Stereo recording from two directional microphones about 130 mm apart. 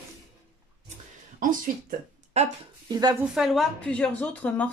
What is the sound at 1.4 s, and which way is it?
Speech, 90° right.